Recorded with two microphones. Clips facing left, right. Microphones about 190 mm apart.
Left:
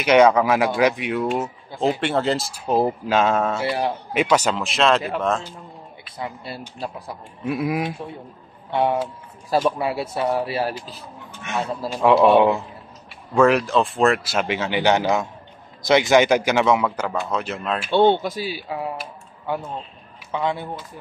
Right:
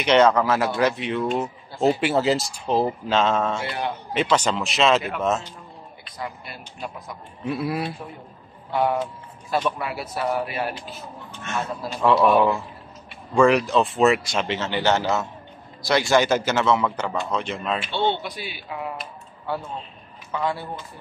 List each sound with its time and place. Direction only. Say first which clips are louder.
0.0 s a man's voice: left 2 dB; 10° left (ahead or behind)
1.8 s a man's voice: right 1 dB; 5° right (ahead or behind)
6.1 s a man's voice: left 3 dB; 30° left (ahead or behind)
7.4 s a man's voice: left 3 dB; 15° left (ahead or behind)
8.7 s a man's voice: left 2 dB; 25° left (ahead or behind)
11.5 s a man's voice: left 3 dB; 15° left (ahead or behind)
13.3 s a man's voice: left 1 dB; 5° left (ahead or behind)
17.9 s speech: left 11 dB; 50° left (ahead or behind); by 18.9 s 30° left (ahead or behind)
20.2 s speech: left 2 dB; 20° left (ahead or behind)